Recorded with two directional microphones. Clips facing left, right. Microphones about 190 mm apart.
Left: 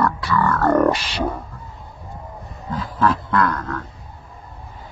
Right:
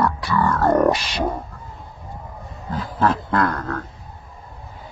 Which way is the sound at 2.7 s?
30° right (ahead or behind).